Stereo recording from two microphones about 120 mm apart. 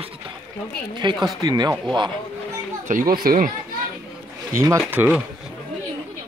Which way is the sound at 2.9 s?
90° right.